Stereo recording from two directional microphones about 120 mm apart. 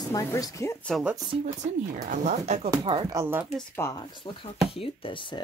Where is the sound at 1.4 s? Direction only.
85° right.